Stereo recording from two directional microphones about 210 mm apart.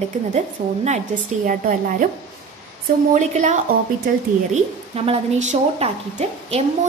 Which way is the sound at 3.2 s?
35° right (ahead or behind).